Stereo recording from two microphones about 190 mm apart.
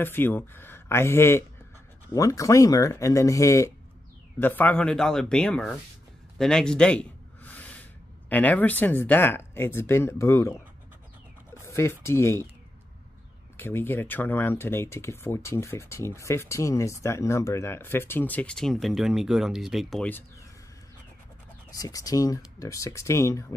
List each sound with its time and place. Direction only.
0.0 s speech: 10° left (ahead or behind)
6.3 s a sound: 5° left (ahead or behind)
8.3 s speech: 10° left (ahead or behind)
11.5 s speech: 15° left (ahead or behind)
13.6 s speech: 10° left (ahead or behind)
21.6 s speech: 20° left (ahead or behind)